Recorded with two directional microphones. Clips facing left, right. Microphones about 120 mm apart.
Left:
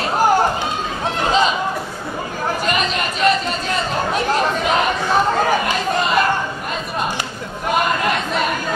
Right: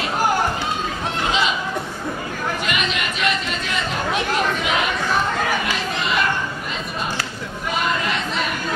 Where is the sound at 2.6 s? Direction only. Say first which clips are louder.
Left 4 dB; 40° left (ahead or behind).